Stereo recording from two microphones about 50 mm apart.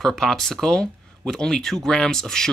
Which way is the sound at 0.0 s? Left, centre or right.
Centre.